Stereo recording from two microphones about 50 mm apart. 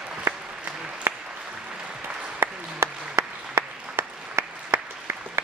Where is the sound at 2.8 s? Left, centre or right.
Right.